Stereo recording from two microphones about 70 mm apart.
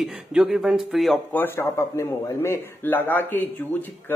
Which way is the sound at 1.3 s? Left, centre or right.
Left.